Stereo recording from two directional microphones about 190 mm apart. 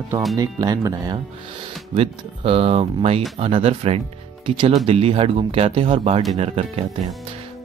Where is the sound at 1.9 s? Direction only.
30° right (ahead or behind).